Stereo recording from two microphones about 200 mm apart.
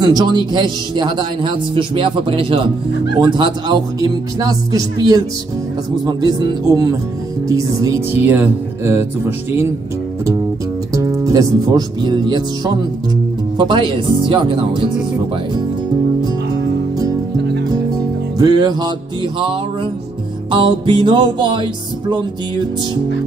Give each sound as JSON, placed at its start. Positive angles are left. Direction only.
{"t": 0.0, "sound": "speech", "side_deg": -20}
{"t": 7.4, "sound": "music", "side_deg": -15}
{"t": 10.9, "sound": "speech", "side_deg": -15}
{"t": 18.4, "sound": "speech", "side_deg": -20}
{"t": 20.5, "sound": "speech", "side_deg": -25}